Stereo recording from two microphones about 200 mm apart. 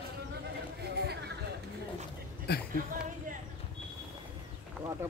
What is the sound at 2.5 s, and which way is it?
Speech, 55° left (ahead or behind).